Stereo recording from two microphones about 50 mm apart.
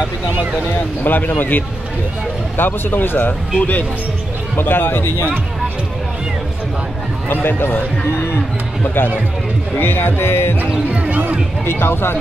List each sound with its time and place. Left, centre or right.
1.0 s speech: left
4.6 s speech: left
7.2 s speech: left
8.8 s speech: left
10.9 s speech: right
11.6 s speech: left